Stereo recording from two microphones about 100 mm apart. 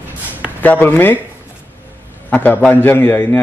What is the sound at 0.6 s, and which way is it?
Speech, 20° left (ahead or behind).